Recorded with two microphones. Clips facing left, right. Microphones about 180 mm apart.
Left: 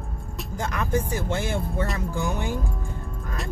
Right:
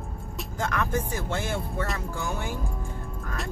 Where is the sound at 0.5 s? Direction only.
15° left (ahead or behind).